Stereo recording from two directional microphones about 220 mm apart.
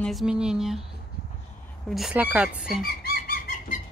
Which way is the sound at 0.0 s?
Centre (ahead or behind).